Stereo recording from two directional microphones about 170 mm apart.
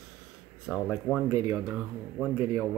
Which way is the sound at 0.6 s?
Centre (ahead or behind).